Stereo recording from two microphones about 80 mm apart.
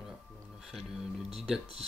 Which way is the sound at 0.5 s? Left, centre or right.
Centre.